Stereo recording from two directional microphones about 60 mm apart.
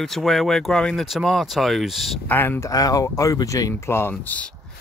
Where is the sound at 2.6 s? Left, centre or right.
Left.